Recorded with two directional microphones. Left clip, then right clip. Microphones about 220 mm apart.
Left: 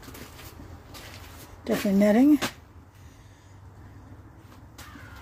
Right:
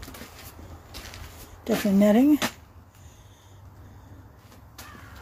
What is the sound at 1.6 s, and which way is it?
Speech, 5° right (ahead or behind).